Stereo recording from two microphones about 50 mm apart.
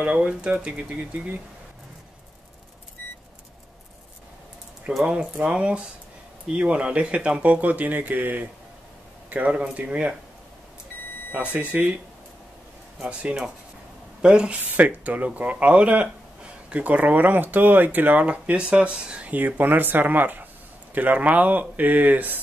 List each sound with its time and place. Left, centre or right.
0.0 s speech: centre
5.0 s speech: right
9.5 s speech: right
11.6 s speech: right
13.1 s speech: right
14.6 s speech: right
19.2 s speech: right